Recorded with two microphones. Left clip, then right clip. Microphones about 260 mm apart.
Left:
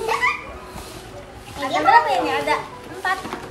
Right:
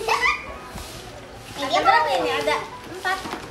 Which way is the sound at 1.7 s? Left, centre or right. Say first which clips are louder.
Left 3 dB; centre.